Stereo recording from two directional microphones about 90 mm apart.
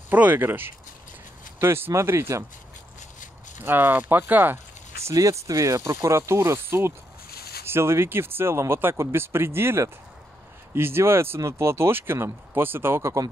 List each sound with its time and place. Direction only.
0.1 s speech: 20° right (ahead or behind)
3.6 s speech: 25° right (ahead or behind)